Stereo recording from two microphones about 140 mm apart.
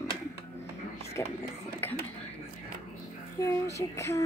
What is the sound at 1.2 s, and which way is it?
Speech, 20° left (ahead or behind).